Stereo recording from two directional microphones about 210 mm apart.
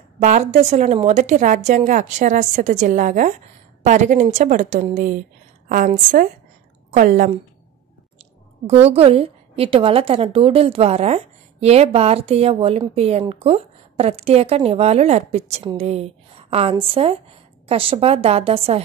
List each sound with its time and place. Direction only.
0.2 s a woman's voice: 35° right (ahead or behind)